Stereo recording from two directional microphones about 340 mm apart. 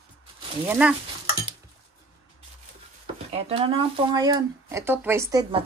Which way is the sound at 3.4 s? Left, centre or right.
Centre.